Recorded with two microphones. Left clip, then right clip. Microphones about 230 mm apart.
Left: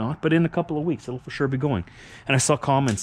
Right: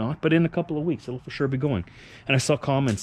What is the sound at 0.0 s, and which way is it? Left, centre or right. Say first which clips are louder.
Speech: even; centre.